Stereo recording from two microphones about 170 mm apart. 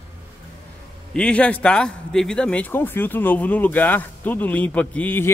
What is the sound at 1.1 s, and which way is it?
Speech, 5° left (ahead or behind).